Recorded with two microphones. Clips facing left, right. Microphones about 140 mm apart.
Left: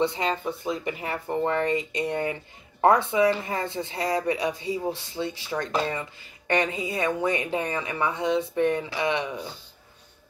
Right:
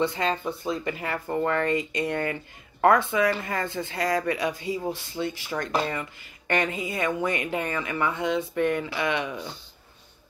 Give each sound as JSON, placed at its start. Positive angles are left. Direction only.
{"t": 0.0, "sound": "speech", "side_deg": 20}